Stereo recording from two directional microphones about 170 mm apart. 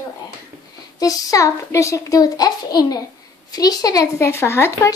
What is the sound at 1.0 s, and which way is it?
Speech, 20° left (ahead or behind).